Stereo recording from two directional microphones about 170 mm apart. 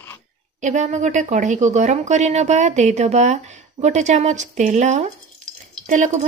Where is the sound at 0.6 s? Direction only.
45° right (ahead or behind).